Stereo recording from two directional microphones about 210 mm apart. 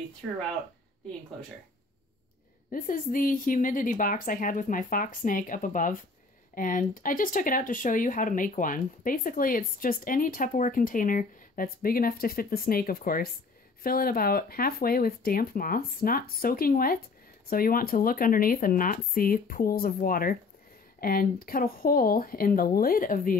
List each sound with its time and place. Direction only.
2.7 s speech: 40° left (ahead or behind)